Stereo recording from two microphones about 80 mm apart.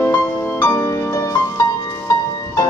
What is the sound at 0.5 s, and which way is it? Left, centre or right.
Music, left.